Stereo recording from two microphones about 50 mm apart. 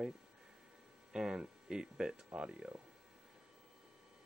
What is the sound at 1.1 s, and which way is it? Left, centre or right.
Speech, centre.